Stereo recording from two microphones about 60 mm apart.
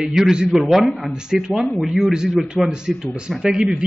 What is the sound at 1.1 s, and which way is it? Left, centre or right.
A man's voice, centre.